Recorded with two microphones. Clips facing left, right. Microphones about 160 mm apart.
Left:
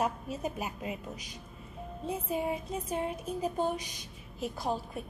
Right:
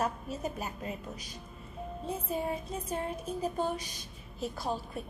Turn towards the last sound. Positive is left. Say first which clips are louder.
# left 1 dB
turn(degrees=15)  # may be behind; listen again after turning